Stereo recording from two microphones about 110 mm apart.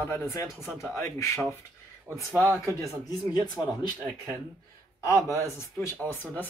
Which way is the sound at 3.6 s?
15° left (ahead or behind).